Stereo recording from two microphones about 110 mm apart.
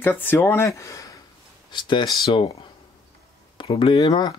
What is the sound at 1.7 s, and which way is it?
Speech, 45° left (ahead or behind).